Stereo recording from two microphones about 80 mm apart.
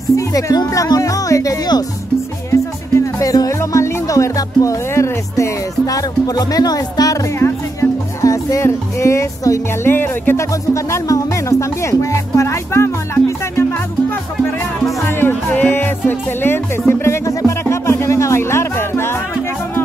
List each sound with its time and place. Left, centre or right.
0.1 s speech: left
2.5 s music: left
7.3 s music: left
9.8 s music: left
10.7 s music: left
15.0 s music: left